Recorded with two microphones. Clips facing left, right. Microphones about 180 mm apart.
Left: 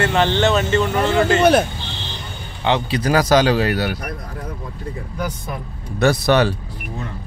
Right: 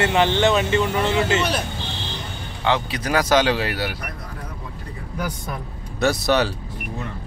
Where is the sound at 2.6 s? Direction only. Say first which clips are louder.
Left 4 dB; 25° left (ahead or behind); by 3.9 s 45° left (ahead or behind).